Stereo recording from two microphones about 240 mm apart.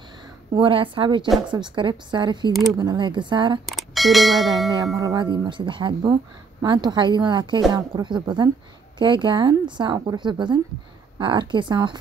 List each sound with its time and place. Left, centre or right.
0.6 s a woman's voice: right
3.6 s speech: centre
4.9 s a woman's voice: centre